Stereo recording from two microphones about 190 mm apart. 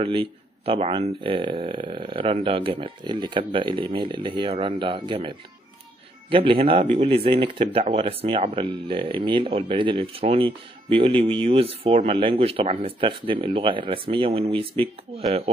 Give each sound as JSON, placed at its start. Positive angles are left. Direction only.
{"t": 0.0, "sound": "speech", "side_deg": -30}
{"t": 6.3, "sound": "speech", "side_deg": -30}